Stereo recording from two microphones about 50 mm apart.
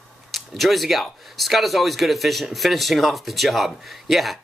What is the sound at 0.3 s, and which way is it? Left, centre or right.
Speech, centre.